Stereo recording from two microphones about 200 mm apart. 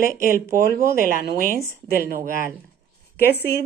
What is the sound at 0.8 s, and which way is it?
Speech, 45° left (ahead or behind).